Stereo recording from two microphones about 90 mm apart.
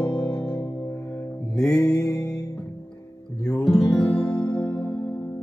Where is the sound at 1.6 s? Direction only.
40° left (ahead or behind).